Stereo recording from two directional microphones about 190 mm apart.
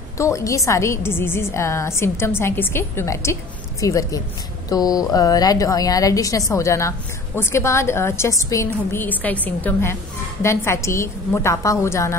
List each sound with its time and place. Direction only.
0.2 s a woman's voice: 15° left (ahead or behind)